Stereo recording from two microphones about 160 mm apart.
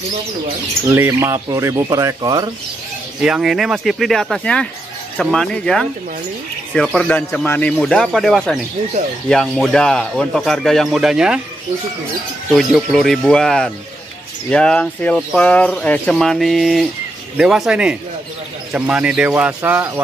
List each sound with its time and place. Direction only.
0.9 s speech: 15° right (ahead or behind)
3.2 s speech: 5° right (ahead or behind)
12.4 s speech: centre (ahead or behind)